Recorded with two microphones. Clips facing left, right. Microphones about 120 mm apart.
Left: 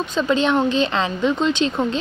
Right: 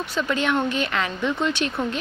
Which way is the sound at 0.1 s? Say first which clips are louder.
Left 5 dB; 25° left (ahead or behind).